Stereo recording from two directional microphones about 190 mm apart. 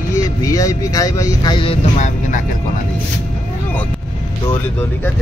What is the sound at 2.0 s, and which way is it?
Speech, 40° left (ahead or behind).